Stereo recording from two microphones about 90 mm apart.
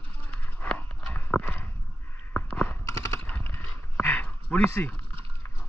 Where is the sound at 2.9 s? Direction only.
35° left (ahead or behind).